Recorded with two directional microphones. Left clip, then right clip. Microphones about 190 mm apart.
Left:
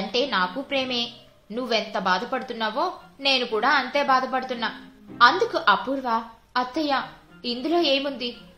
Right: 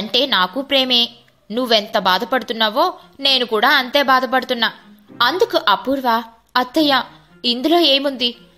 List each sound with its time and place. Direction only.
0.1 s a woman's voice: 50° right (ahead or behind)